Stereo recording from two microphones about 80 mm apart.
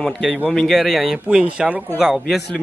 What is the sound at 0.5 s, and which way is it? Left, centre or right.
Speech, centre.